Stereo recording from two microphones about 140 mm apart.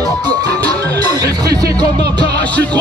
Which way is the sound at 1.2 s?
25° right (ahead or behind).